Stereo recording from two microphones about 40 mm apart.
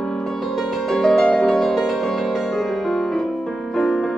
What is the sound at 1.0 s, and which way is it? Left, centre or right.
Music, centre.